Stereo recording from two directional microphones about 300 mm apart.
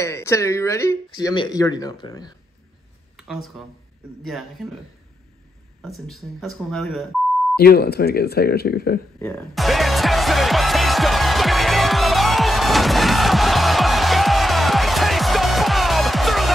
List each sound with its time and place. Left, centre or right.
0.0 s speech: centre
3.2 s speech: centre
5.8 s speech: centre
7.5 s speech: left
9.2 s music: centre